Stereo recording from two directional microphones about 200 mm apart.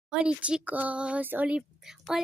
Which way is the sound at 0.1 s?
5° right (ahead or behind).